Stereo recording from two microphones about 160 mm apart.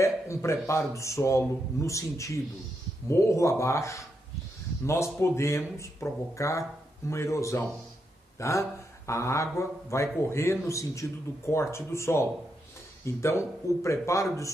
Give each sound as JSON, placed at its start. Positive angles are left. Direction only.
{"t": 0.0, "sound": "a man's voice", "side_deg": 20}